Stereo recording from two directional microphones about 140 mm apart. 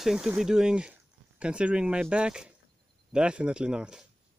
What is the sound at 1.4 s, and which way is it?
Speech, 10° right (ahead or behind).